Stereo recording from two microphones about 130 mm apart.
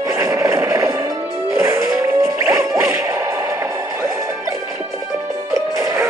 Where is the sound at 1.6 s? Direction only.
20° right (ahead or behind).